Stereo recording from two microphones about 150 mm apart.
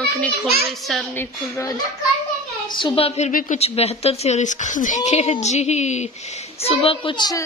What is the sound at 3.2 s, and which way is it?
Speech, 60° left (ahead or behind).